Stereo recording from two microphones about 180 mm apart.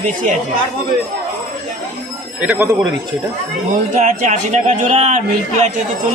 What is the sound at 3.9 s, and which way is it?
A man's voice, 45° right (ahead or behind).